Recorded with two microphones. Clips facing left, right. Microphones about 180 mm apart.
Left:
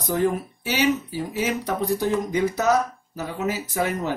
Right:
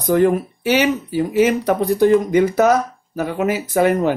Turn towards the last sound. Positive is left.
turn(degrees=-60)  # may be behind; listen again after turning